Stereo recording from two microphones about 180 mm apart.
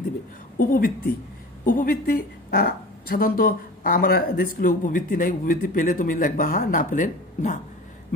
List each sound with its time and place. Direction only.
0.6 s a woman's voice: 50° left (ahead or behind)